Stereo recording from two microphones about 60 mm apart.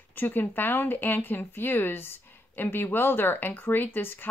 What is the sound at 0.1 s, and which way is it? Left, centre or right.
Speech, left.